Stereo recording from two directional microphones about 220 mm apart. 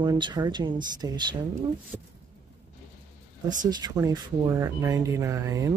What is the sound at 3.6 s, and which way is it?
Speech, 20° right (ahead or behind).